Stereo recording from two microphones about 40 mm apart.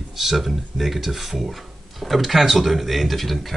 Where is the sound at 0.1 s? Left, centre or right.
Centre.